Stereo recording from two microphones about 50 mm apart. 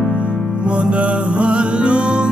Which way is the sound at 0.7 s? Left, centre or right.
Right.